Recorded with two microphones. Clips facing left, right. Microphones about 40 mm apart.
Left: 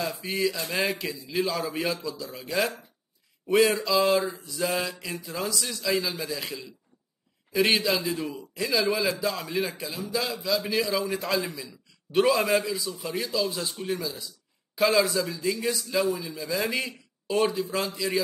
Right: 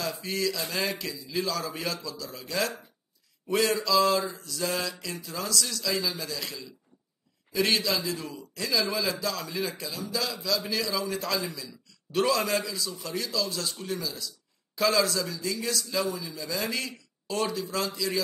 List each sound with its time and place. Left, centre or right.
0.2 s a man's voice: left